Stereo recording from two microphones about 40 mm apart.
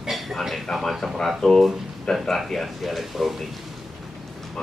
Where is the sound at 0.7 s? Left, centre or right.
Centre.